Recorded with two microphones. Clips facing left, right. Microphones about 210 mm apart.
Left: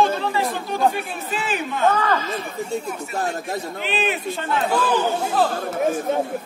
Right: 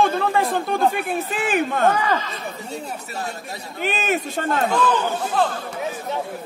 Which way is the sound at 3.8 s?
45° right (ahead or behind).